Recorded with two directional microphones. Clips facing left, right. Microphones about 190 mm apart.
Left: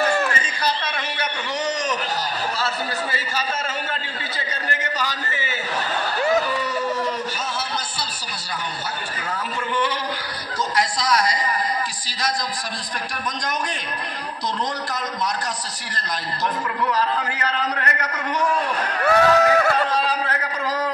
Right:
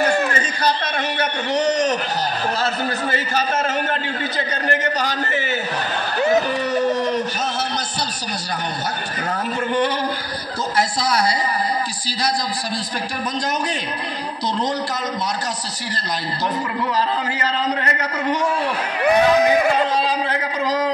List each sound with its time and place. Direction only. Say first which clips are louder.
1.5 s a man's voice: right 7 dB; 60° right (ahead or behind)
3.1 s a man's voice: right 5 dB; 50° right (ahead or behind)
4.6 s a man's voice: right 6 dB; 60° right (ahead or behind)
16.9 s a man's voice: right 3 dB; 30° right (ahead or behind)